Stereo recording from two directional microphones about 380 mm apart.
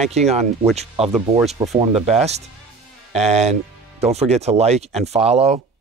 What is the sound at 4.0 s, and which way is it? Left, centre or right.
Speech, centre.